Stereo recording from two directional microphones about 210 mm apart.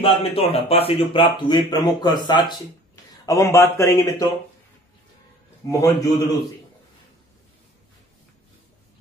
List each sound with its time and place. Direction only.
0.0 s a man's voice: 30° left (ahead or behind)
5.7 s a man's voice: 15° left (ahead or behind)